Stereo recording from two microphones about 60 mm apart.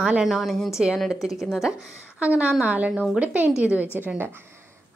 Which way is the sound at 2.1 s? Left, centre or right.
Right.